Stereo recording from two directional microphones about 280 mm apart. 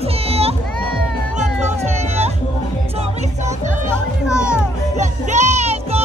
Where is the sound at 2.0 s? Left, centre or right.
Right.